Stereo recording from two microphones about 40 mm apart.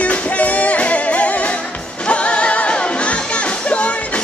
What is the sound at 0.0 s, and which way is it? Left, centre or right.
Music, left.